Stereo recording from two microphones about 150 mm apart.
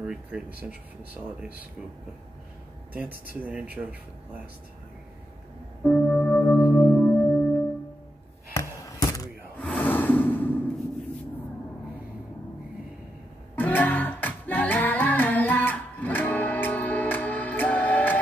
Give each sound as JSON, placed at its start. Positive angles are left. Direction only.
{"t": 0.0, "sound": "speech", "side_deg": -5}
{"t": 2.9, "sound": "speech", "side_deg": -10}
{"t": 5.9, "sound": "music", "side_deg": 10}
{"t": 8.5, "sound": "a sound", "side_deg": 20}
{"t": 9.6, "sound": "a sound", "side_deg": 10}
{"t": 13.6, "sound": "music", "side_deg": 10}